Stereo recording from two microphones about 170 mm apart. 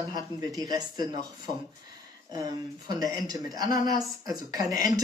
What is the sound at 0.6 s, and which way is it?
Speech, 25° right (ahead or behind).